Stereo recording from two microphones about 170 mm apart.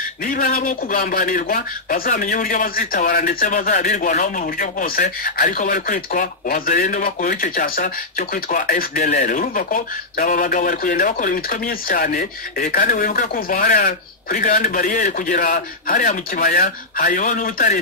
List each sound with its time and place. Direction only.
0.3 s speech: 55° left (ahead or behind)